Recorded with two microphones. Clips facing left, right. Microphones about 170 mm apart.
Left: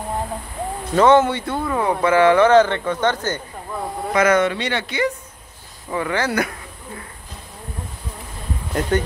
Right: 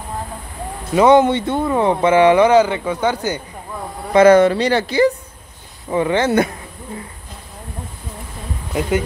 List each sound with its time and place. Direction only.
0.9 s speech: 15° right (ahead or behind)
4.1 s speech: 30° right (ahead or behind)
5.9 s speech: 25° right (ahead or behind)
8.7 s speech: centre (ahead or behind)